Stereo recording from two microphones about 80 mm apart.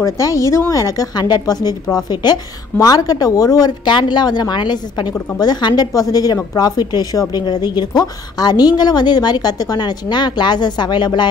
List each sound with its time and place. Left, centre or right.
0.0 s a woman's voice: left
3.9 s a woman's voice: left
5.9 s a woman's voice: left